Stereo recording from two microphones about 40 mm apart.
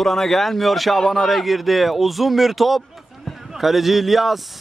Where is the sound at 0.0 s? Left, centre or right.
Centre.